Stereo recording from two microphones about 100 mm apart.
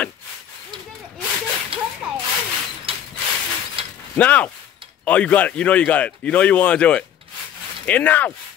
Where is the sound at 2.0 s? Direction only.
10° right (ahead or behind).